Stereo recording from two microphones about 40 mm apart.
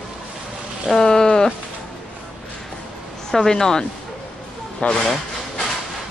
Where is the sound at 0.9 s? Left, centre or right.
Centre.